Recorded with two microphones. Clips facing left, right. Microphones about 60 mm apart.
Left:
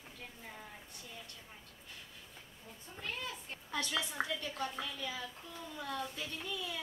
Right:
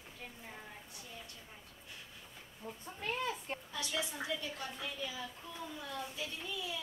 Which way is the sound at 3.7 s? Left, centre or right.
Left.